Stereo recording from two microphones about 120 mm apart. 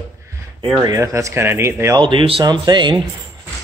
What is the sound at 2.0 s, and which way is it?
Speech, 45° right (ahead or behind).